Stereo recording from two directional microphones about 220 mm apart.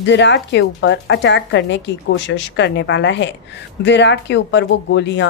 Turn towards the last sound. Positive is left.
turn(degrees=55)  # may be behind; listen again after turning